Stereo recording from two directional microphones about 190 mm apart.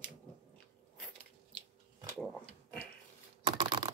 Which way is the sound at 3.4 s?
25° right (ahead or behind).